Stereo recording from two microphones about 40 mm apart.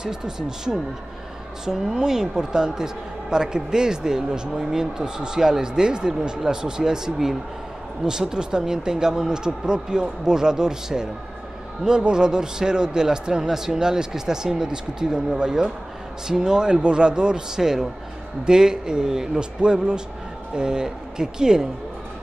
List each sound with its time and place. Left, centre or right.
0.0 s a woman's voice: centre
17.6 s a woman's voice: centre